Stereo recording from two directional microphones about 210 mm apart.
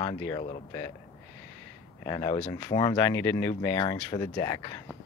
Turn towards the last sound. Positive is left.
turn(degrees=20)  # may be behind; listen again after turning